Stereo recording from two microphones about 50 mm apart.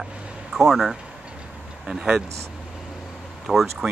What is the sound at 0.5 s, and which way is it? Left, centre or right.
Speech, centre.